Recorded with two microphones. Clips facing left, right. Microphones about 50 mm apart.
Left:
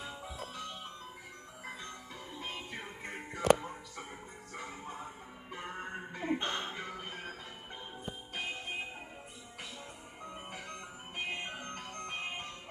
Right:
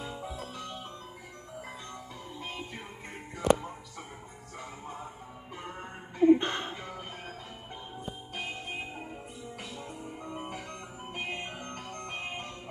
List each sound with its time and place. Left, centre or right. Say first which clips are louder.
2.4 s music: right 1 dB; left
4.6 s music: right 1 dB; left
6.4 s music: right 3 dB; right
6.8 s music: right 1 dB; left
11.1 s music: right 1 dB; centre